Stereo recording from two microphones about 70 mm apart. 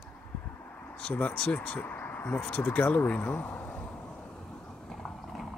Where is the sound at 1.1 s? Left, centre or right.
Left.